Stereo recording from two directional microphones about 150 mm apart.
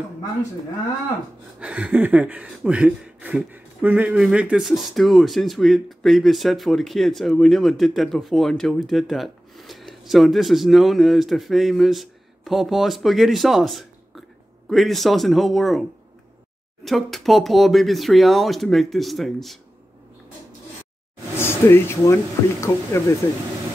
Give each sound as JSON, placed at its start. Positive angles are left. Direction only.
{"t": 1.6, "sound": "speech", "side_deg": -10}
{"t": 16.8, "sound": "speech", "side_deg": 0}
{"t": 21.4, "sound": "speech", "side_deg": 15}